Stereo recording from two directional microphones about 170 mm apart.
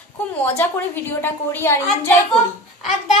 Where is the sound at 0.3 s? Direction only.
10° left (ahead or behind).